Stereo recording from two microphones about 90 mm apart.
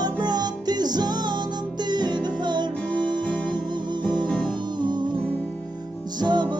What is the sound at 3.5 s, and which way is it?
Music, 55° right (ahead or behind).